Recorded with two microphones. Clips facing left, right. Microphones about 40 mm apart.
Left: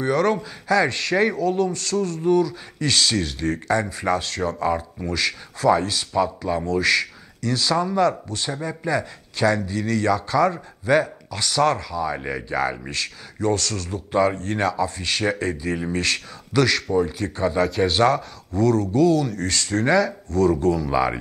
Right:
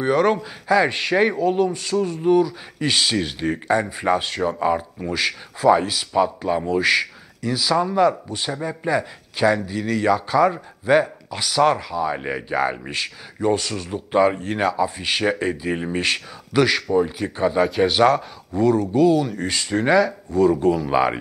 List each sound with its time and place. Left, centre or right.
0.0 s a man's voice: centre